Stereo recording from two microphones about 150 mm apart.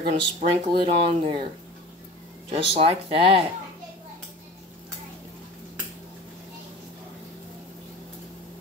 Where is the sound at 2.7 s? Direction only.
40° right (ahead or behind).